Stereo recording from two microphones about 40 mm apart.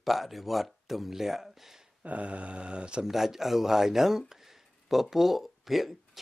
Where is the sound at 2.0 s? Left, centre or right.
Right.